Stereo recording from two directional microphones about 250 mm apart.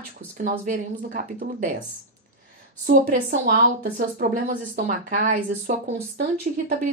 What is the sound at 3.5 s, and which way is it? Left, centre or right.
Speech, right.